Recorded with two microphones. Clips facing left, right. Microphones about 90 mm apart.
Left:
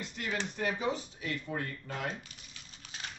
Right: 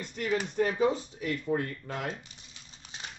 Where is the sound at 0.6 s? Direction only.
35° right (ahead or behind).